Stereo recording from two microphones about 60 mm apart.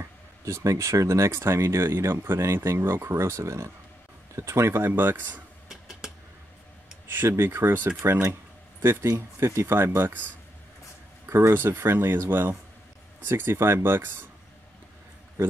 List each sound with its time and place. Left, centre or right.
0.5 s speech: right
5.7 s a sound: centre
7.1 s speech: right
9.9 s speech: right
11.2 s speech: right